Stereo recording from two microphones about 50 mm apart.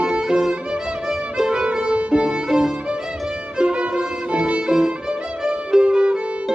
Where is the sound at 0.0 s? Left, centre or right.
Centre.